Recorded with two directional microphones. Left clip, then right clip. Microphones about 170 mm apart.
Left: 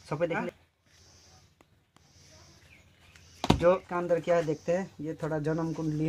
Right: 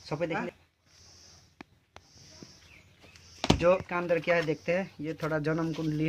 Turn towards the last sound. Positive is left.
turn(degrees=0)  # may be behind; listen again after turning